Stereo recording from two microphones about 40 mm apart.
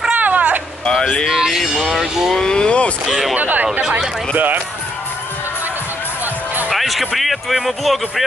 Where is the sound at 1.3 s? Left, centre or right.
Centre.